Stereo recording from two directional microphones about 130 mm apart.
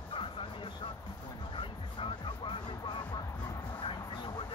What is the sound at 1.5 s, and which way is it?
Music, 40° left (ahead or behind).